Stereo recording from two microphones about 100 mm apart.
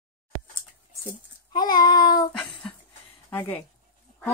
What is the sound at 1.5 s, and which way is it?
Child singing, 45° left (ahead or behind).